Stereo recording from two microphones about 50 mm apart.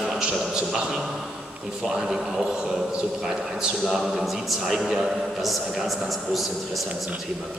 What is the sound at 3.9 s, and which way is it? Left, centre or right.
Speech, centre.